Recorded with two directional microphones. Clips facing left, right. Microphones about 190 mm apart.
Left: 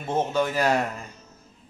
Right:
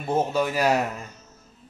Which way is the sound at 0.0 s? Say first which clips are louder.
Right 1 dB; 10° right (ahead or behind).